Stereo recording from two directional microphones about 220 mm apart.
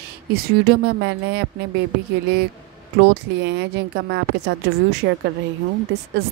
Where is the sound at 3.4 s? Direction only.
50° right (ahead or behind).